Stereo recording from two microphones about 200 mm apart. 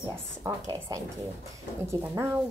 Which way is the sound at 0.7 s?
15° right (ahead or behind).